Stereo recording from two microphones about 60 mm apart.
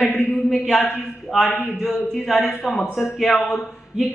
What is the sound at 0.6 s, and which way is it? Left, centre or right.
A man's voice, centre.